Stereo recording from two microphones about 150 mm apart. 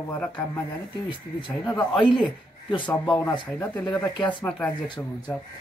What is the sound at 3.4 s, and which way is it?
A man's voice, 10° left (ahead or behind).